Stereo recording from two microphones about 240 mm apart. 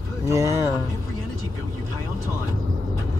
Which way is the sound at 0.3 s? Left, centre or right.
Centre.